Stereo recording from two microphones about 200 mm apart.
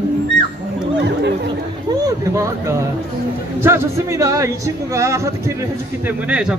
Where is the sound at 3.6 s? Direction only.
15° right (ahead or behind).